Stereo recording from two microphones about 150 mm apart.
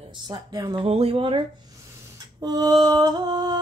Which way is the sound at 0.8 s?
40° right (ahead or behind).